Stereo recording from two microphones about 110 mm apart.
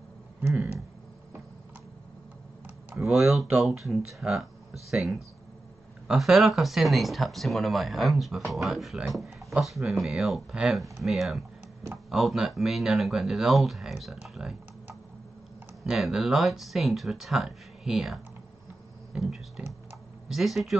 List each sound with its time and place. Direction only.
3.0 s speech: centre (ahead or behind)
6.0 s speech: centre (ahead or behind)
15.8 s speech: 5° right (ahead or behind)
19.1 s typing: 5° right (ahead or behind)
20.2 s speech: centre (ahead or behind)